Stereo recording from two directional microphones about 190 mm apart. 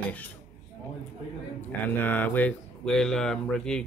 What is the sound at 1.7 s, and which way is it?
Speech, 10° left (ahead or behind).